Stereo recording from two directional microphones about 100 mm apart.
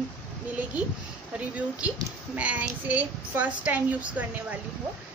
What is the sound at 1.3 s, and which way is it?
A child's voice, 15° right (ahead or behind).